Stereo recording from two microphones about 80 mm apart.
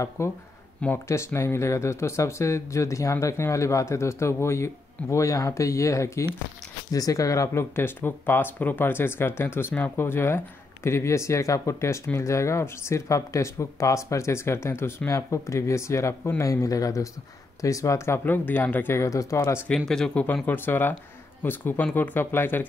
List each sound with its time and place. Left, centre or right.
0.2 s speech: left
18.9 s speech: left
19.9 s speech: centre
20.4 s speech: left